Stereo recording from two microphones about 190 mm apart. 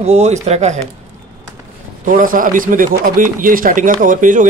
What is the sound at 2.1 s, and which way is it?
Speech, 45° right (ahead or behind).